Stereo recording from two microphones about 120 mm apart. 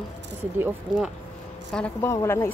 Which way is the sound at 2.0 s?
25° left (ahead or behind).